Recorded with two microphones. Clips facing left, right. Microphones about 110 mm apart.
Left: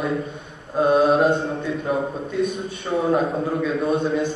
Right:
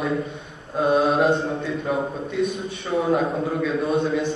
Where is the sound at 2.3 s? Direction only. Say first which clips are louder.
Left 1 dB; centre (ahead or behind).